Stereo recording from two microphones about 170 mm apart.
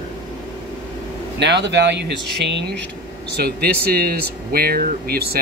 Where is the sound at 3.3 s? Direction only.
65° right (ahead or behind).